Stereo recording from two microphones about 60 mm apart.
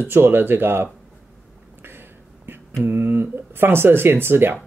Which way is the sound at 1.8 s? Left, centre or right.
Right.